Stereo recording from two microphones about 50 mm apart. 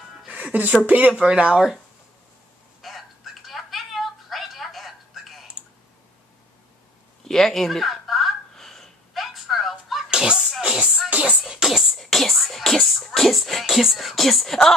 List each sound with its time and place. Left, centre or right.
0.3 s music: right
0.8 s speech: right
1.1 s speech: right
2.8 s music: centre
7.2 s a sound: centre
10.1 s a sound: centre
11.1 s music: right
11.3 s music: centre
11.6 s beatboxing: centre
12.0 s music: centre